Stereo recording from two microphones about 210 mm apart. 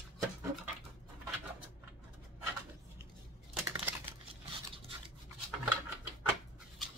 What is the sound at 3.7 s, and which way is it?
Computer keyboard, 10° right (ahead or behind).